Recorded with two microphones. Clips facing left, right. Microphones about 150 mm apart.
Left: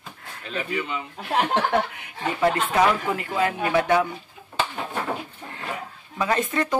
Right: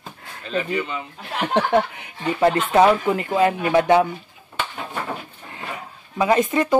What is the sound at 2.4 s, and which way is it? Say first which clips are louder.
Speech: right 5 dB; 30° right (ahead or behind).